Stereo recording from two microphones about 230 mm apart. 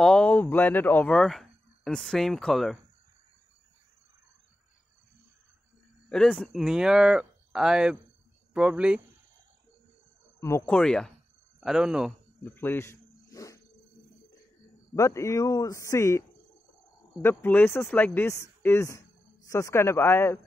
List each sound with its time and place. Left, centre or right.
0.0 s speech: centre
6.0 s speech: centre
10.4 s speech: centre
12.4 s cricket: centre
15.0 s a man's voice: centre